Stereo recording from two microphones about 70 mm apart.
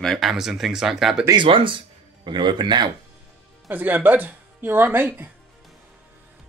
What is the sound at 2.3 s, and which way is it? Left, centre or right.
Speech, right.